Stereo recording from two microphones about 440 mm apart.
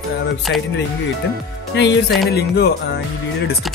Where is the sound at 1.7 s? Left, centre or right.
Left.